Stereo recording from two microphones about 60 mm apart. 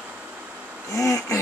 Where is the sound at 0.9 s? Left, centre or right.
Left.